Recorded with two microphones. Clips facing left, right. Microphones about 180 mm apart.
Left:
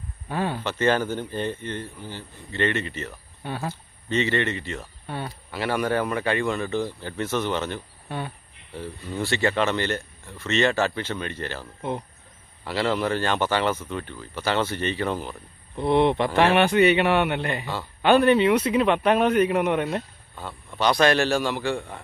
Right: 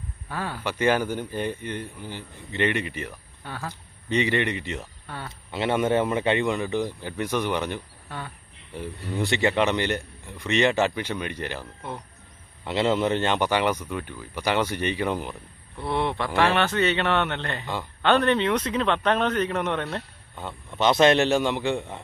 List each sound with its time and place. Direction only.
0.3 s speech: 20° left (ahead or behind)
0.7 s speech: 10° right (ahead or behind)
3.4 s speech: 20° left (ahead or behind)
4.1 s speech: 15° right (ahead or behind)
5.0 s speech: 20° left (ahead or behind)
5.5 s speech: 25° right (ahead or behind)
12.6 s speech: 20° right (ahead or behind)
15.7 s speech: 20° left (ahead or behind)
20.3 s a man's voice: 20° right (ahead or behind)